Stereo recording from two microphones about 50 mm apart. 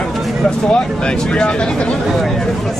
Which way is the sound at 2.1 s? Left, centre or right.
Centre.